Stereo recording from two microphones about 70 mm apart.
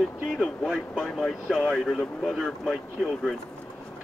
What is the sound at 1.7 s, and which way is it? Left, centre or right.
Speech, centre.